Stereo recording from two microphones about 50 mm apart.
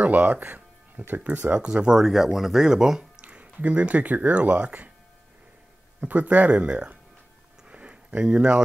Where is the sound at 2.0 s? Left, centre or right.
Centre; by 4.9 s right.